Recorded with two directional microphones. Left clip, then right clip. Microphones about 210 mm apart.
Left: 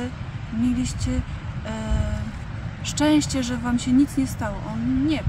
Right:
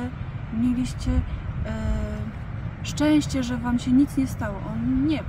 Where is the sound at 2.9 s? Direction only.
10° left (ahead or behind).